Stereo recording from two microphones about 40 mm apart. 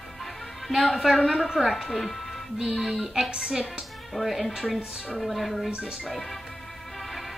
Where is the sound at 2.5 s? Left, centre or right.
Centre.